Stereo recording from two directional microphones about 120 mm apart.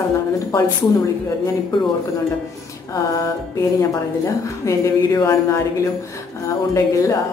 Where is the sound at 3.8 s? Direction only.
25° left (ahead or behind).